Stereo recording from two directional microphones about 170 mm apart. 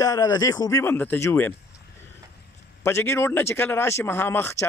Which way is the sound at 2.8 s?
15° left (ahead or behind).